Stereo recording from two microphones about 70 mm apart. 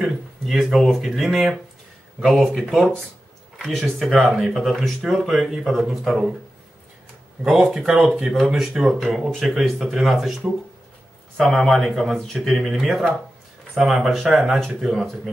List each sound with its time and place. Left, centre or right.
0.0 s speech: centre
3.5 s a sound: centre
4.0 s speech: centre
7.7 s speech: centre
11.3 s speech: centre